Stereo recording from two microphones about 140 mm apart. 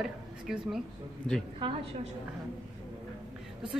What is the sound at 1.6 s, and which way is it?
Speech, 35° right (ahead or behind).